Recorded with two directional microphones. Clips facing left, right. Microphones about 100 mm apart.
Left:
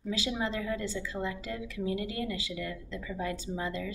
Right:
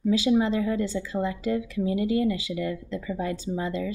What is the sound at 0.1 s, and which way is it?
Speech, 20° right (ahead or behind).